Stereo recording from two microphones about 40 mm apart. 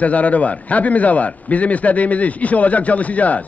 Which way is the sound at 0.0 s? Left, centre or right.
Left.